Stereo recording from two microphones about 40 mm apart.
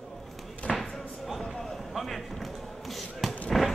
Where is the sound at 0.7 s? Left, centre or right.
Centre.